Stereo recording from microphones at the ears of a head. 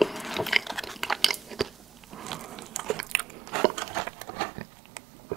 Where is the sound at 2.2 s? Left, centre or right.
Right.